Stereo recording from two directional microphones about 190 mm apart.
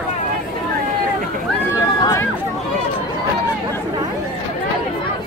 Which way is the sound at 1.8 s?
20° left (ahead or behind).